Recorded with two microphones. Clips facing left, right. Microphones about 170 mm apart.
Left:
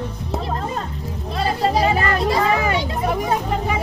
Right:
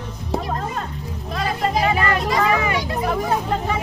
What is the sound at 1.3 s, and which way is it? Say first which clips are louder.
Vehicle: left 2 dB; 30° left (ahead or behind).